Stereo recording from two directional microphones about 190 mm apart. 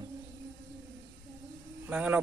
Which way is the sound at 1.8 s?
10° right (ahead or behind).